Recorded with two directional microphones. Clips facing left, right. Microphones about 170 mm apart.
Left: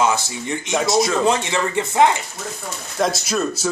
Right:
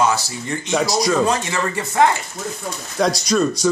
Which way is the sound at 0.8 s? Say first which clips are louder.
Left 1 dB; centre (ahead or behind).